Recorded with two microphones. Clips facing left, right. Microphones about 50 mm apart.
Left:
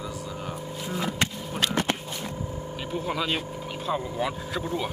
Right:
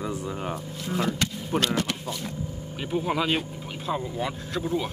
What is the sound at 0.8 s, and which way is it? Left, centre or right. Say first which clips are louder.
Speech: right 4 dB; centre.